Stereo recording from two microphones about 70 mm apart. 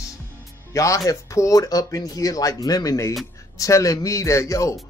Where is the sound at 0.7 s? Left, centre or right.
Left.